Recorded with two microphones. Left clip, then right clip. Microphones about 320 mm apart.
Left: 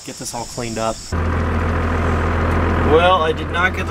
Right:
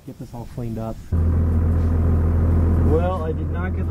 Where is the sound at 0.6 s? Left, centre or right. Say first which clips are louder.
Left 9 dB; centre.